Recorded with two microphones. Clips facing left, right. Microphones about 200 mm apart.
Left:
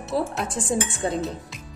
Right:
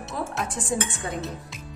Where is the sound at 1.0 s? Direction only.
30° left (ahead or behind).